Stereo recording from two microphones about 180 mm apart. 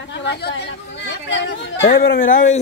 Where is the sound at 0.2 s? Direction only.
70° left (ahead or behind).